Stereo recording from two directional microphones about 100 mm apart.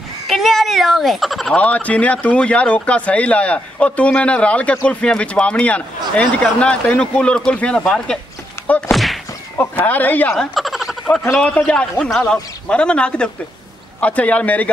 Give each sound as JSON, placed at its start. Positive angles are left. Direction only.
{"t": 0.3, "sound": "fowl", "side_deg": 0}
{"t": 1.5, "sound": "speech", "side_deg": 15}
{"t": 8.6, "sound": "thunk", "side_deg": 15}
{"t": 8.9, "sound": "a sound", "side_deg": 0}
{"t": 9.6, "sound": "speech", "side_deg": 15}
{"t": 10.3, "sound": "a sound", "side_deg": 0}
{"t": 11.3, "sound": "speech", "side_deg": 10}